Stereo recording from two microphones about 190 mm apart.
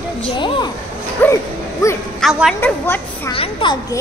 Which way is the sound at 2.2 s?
Centre (ahead or behind).